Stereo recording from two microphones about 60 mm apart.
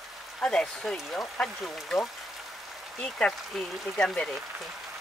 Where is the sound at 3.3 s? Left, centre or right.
Centre.